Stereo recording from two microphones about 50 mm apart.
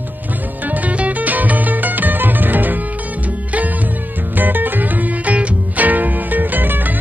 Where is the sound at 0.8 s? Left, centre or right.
Right.